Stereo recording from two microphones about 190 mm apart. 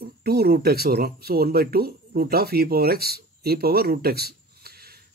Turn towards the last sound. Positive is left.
turn(degrees=-55)  # may be behind; listen again after turning